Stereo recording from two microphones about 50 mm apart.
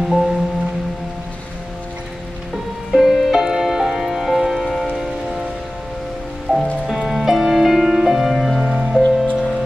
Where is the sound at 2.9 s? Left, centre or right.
Centre.